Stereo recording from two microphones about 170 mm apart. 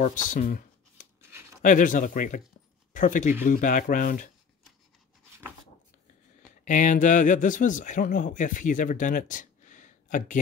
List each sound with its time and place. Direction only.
0.0 s a sound: 50° left (ahead or behind)
1.6 s speech: 50° left (ahead or behind)
6.6 s speech: 45° left (ahead or behind)